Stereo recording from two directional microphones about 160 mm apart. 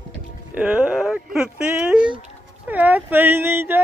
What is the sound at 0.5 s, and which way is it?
Speech, 10° right (ahead or behind).